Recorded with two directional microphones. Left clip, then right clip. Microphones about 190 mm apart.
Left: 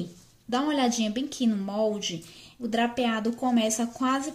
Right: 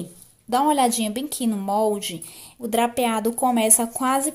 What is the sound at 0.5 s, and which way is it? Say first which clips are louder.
A woman's voice: right 7 dB; 35° right (ahead or behind).